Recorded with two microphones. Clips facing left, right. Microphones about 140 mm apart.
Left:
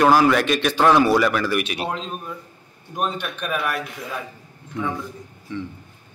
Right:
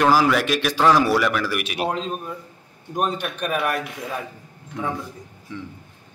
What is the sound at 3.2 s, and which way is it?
Speech, 45° right (ahead or behind).